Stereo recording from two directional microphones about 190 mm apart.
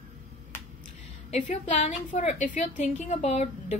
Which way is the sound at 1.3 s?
35° left (ahead or behind).